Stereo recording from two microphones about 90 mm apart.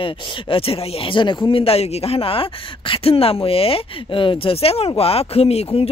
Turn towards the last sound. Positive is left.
turn(degrees=90)